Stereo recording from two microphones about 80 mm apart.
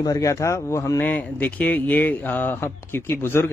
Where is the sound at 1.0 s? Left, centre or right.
Left.